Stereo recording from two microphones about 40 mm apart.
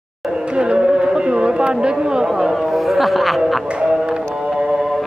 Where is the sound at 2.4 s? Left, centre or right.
Centre.